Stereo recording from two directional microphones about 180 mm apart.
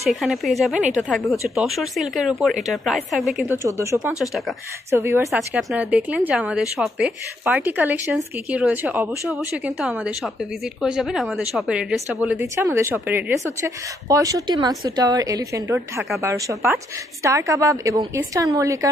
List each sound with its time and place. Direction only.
0.0 s speech: centre (ahead or behind)
3.4 s a woman's voice: 15° right (ahead or behind)
4.0 s a woman's voice: 5° right (ahead or behind)